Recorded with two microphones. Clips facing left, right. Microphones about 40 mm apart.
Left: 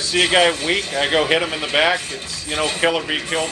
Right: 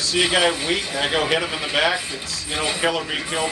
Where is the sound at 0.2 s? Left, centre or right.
Left.